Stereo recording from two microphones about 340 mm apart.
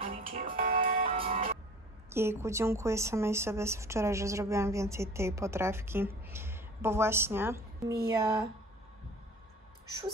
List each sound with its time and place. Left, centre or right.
0.0 s music: centre
2.0 s speech: centre